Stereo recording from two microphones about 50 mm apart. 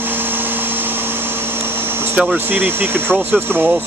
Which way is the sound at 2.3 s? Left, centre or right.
Right.